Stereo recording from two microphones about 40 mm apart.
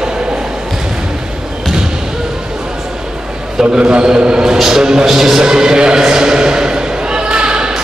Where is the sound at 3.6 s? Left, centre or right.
Right.